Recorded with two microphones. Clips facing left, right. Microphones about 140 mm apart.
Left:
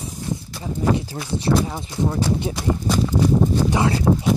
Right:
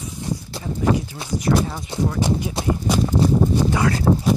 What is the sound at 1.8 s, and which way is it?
Speech, 25° right (ahead or behind).